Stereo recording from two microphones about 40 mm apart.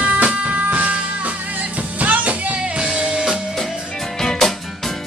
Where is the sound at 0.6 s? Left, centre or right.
Right.